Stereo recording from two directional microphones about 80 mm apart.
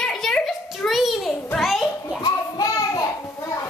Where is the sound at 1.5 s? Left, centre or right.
Centre.